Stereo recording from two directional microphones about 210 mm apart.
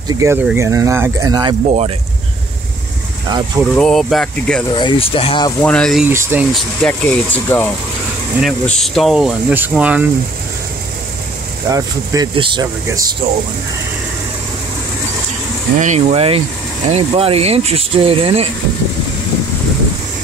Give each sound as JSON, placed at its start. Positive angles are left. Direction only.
{"t": 0.1, "sound": "speech", "side_deg": -15}
{"t": 3.3, "sound": "speech", "side_deg": -20}
{"t": 3.7, "sound": "speech", "side_deg": 0}
{"t": 4.7, "sound": "speech", "side_deg": 25}
{"t": 5.6, "sound": "speech", "side_deg": 5}
{"t": 6.0, "sound": "speech", "side_deg": -10}
{"t": 6.8, "sound": "speech", "side_deg": 10}
{"t": 11.7, "sound": "speech", "side_deg": -15}
{"t": 15.8, "sound": "speech", "side_deg": -30}